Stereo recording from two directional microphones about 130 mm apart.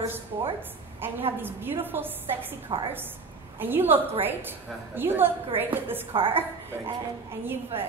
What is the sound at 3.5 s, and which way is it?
A woman's voice, 15° right (ahead or behind).